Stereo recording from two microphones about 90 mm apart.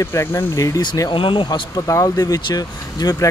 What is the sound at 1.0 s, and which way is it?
Speech, 70° left (ahead or behind).